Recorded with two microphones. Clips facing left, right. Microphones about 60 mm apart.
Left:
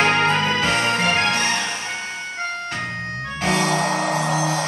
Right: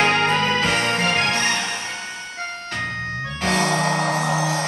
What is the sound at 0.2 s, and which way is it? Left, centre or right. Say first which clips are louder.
Music: even; left.